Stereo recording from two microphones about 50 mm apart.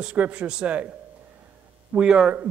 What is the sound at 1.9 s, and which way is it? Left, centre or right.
Speech, centre.